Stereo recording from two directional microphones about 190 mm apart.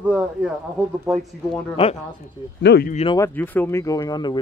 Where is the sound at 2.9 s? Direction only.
30° left (ahead or behind).